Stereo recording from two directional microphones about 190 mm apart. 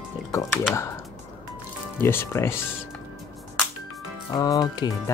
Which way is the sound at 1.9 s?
10° left (ahead or behind).